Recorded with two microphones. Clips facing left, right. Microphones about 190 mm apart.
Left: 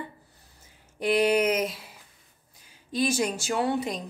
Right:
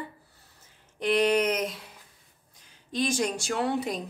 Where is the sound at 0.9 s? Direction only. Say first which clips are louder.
Left 1 dB; 5° left (ahead or behind).